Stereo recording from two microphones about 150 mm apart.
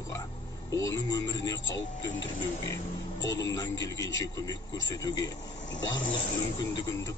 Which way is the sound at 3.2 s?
25° left (ahead or behind).